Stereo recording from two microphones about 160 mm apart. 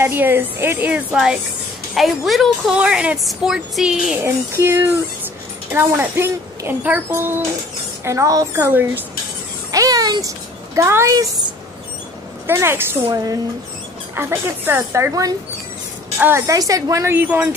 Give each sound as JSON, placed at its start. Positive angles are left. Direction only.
{"t": 0.0, "sound": "a woman's voice", "side_deg": -15}
{"t": 4.2, "sound": "speech", "side_deg": -15}
{"t": 9.7, "sound": "a sound", "side_deg": -25}
{"t": 12.4, "sound": "speech", "side_deg": -15}